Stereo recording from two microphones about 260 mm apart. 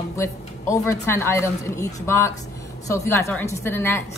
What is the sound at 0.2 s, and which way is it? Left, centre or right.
Speech, centre.